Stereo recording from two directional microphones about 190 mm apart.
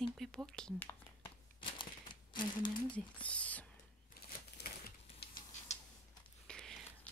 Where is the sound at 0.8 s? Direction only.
20° left (ahead or behind).